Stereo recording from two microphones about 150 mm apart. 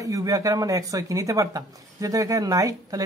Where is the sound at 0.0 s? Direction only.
20° right (ahead or behind).